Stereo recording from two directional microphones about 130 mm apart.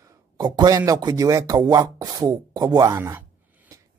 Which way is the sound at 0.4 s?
30° right (ahead or behind).